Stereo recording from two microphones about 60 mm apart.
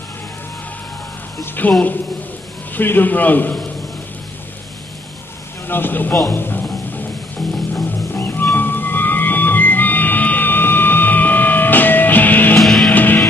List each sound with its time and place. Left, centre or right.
1.6 s a man's voice: left
5.7 s a sound: left
6.2 s a man's voice: left
7.7 s music: left
12.5 s music: centre
12.9 s music: left